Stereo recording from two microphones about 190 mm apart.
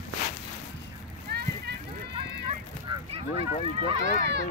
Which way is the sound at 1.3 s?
55° right (ahead or behind).